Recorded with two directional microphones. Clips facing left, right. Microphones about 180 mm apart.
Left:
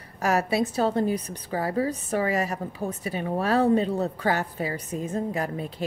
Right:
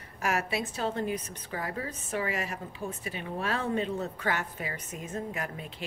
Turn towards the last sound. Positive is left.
turn(degrees=35)  # may be behind; listen again after turning